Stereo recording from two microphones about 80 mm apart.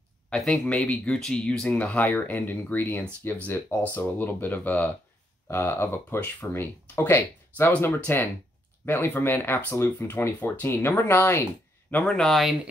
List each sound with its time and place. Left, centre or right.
0.3 s speech: centre
1.8 s speech: centre
5.5 s speech: left
12.0 s speech: centre